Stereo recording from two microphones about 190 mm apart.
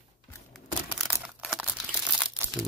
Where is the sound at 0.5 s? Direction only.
5° right (ahead or behind).